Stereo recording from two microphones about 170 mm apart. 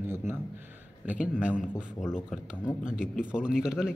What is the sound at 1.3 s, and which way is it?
Speech, 5° right (ahead or behind).